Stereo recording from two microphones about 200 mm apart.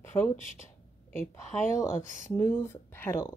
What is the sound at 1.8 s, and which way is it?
Speech, 15° left (ahead or behind).